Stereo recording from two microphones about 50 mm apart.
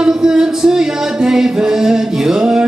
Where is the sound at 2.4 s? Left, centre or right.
Centre.